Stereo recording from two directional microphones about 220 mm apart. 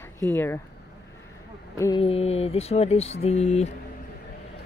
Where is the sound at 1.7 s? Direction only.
15° left (ahead or behind).